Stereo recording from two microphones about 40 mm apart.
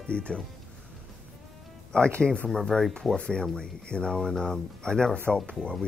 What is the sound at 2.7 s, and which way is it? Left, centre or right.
Speech, centre.